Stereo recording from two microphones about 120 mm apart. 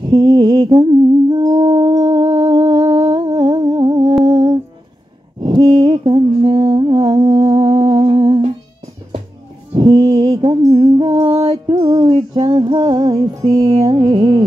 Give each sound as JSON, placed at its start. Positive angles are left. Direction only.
{"t": 0.1, "sound": "a sound", "side_deg": -30}
{"t": 1.3, "sound": "music", "side_deg": -30}
{"t": 3.1, "sound": "humming", "side_deg": -35}
{"t": 4.2, "sound": "music", "side_deg": -35}
{"t": 5.4, "sound": "mantra", "side_deg": -35}
{"t": 9.8, "sound": "music", "side_deg": -40}